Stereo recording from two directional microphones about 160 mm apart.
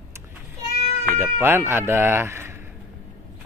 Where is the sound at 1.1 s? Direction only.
15° right (ahead or behind).